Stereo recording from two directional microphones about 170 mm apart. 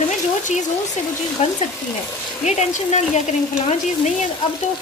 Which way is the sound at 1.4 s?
40° left (ahead or behind).